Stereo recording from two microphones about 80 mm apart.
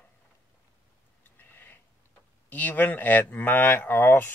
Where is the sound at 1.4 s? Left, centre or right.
Left.